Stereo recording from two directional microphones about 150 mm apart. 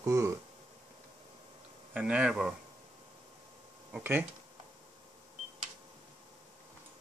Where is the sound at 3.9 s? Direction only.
15° right (ahead or behind).